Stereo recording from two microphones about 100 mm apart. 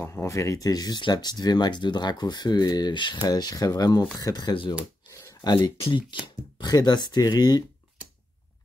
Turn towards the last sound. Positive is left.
turn(degrees=45)  # may be behind; listen again after turning